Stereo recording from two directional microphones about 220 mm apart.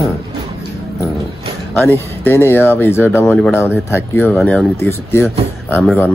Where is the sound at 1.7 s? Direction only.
10° left (ahead or behind).